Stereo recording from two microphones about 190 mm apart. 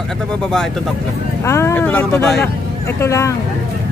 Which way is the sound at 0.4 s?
5° left (ahead or behind).